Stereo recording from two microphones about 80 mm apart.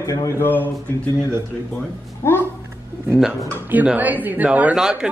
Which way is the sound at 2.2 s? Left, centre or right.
Left.